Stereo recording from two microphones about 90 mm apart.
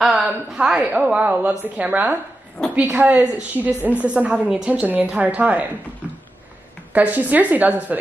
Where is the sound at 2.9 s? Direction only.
15° right (ahead or behind).